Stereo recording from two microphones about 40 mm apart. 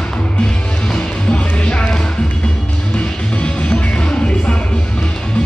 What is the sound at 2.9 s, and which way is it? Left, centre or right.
Music, left.